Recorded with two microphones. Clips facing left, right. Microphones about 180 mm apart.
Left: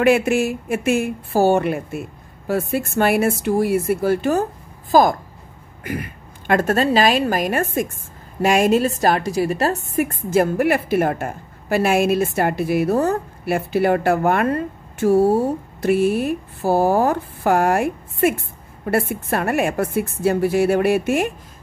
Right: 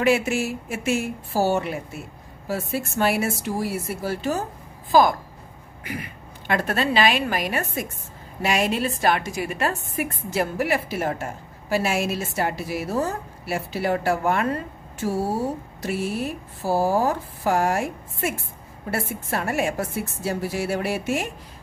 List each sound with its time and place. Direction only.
0.0 s a woman's voice: 55° left (ahead or behind)
4.9 s a woman's voice: 45° left (ahead or behind)